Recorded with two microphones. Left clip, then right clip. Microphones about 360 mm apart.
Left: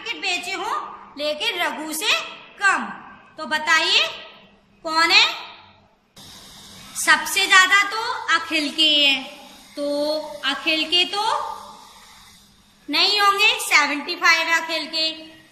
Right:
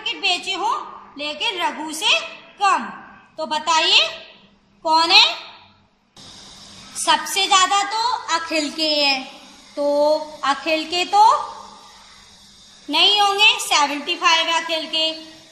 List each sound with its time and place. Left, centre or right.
0.0 s a woman's voice: centre
7.0 s a woman's voice: centre
12.9 s a woman's voice: centre